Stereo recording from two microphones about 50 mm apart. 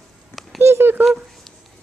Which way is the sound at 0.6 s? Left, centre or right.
Right.